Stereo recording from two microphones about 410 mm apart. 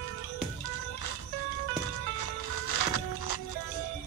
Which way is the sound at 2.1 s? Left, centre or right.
Left.